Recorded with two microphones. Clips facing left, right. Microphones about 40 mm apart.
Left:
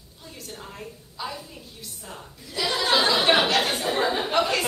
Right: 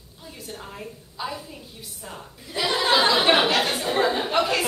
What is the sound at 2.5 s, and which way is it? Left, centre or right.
Speech, right.